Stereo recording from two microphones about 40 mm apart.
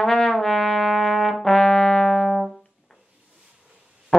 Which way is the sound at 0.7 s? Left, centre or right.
Left.